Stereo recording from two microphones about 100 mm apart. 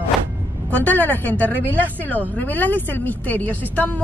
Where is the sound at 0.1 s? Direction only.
Centre (ahead or behind).